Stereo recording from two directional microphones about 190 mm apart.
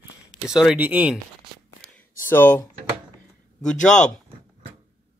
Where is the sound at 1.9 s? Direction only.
10° left (ahead or behind).